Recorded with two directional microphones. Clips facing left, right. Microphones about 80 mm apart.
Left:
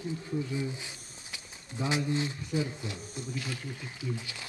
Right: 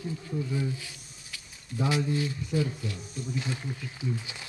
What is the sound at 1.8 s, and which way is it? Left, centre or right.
Speech, left.